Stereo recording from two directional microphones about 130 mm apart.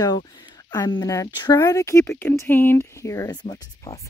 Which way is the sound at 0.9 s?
25° left (ahead or behind).